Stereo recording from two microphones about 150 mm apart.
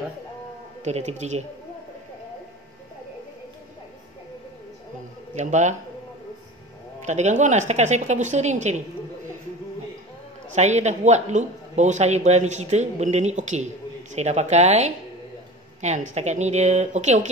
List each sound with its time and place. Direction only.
0.8 s speech: 50° right (ahead or behind)
5.3 s speech: 50° right (ahead or behind)
7.1 s speech: 50° right (ahead or behind)
10.5 s speech: 50° right (ahead or behind)